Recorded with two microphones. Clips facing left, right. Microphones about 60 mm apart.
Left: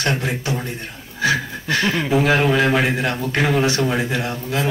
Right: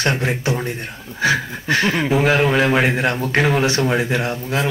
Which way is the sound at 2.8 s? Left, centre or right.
Right.